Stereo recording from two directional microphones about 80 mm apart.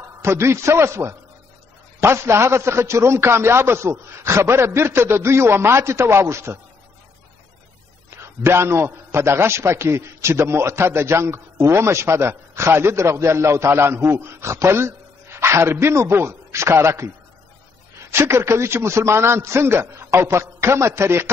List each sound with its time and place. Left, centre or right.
0.2 s a man's voice: right
8.1 s a man's voice: right
18.1 s a man's voice: right